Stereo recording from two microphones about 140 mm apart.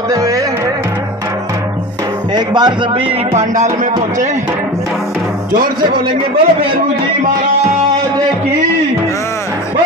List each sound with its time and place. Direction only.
0.1 s music: 25° right (ahead or behind)
2.3 s speech: 30° right (ahead or behind)
3.3 s speech: 60° right (ahead or behind)
5.8 s speech: 40° right (ahead or behind)